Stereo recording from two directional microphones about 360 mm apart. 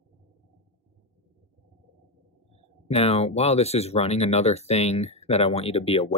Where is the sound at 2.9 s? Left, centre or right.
Centre.